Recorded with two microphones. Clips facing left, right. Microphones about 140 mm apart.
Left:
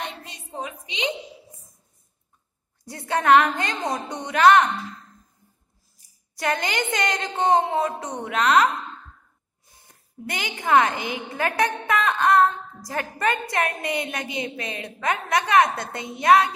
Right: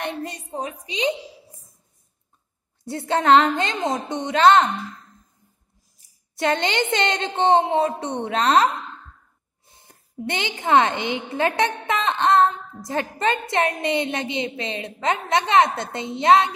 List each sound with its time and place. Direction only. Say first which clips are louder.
0.0 s a sound: right 6 dB; 45° right (ahead or behind)
2.8 s a woman's voice: right 3 dB; 25° right (ahead or behind)
6.3 s a woman's voice: right 4 dB; 25° right (ahead or behind)
9.7 s a woman's voice: right 3 dB; 25° right (ahead or behind)